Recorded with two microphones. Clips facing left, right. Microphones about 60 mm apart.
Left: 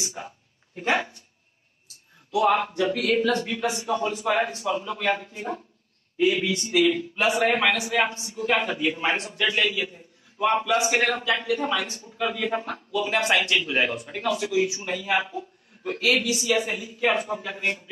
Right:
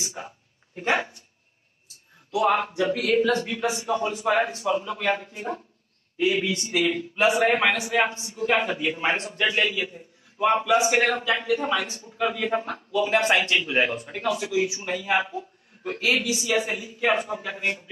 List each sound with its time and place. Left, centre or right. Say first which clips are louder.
0.2 s a man's voice: even; centre
2.3 s a man's voice: left 1 dB; centre
6.4 s speech: left 1 dB; centre
6.8 s a man's voice: left 1 dB; centre
12.9 s speech: right 2 dB; centre
13.6 s a man's voice: right 1 dB; centre
16.0 s a man's voice: left 1 dB; right